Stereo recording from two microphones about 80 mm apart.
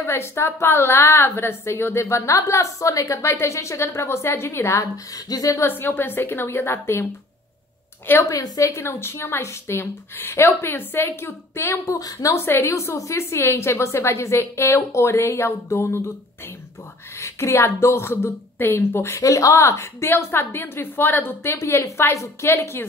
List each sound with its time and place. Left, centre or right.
0.0 s a woman's voice: left
5.6 s a woman's voice: left
8.1 s a woman's voice: left
12.4 s a woman's voice: left
17.2 s a woman's voice: left